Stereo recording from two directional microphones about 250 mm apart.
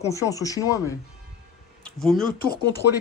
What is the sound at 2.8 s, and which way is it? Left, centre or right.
Speech, left.